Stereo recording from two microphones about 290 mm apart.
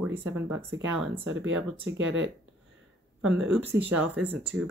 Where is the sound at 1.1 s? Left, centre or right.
Right.